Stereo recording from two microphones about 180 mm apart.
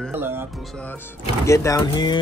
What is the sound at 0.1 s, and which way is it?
Speech, 10° right (ahead or behind).